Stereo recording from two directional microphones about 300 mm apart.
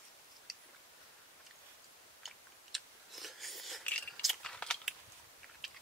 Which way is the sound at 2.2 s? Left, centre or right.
Centre.